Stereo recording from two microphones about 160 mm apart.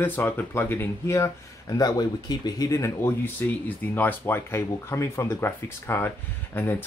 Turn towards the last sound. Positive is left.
turn(degrees=15)  # may be behind; listen again after turning